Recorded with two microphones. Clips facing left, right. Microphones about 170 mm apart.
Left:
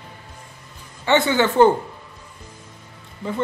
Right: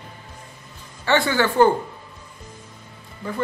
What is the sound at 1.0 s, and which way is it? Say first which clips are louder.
Speech: left 2 dB; 20° left (ahead or behind).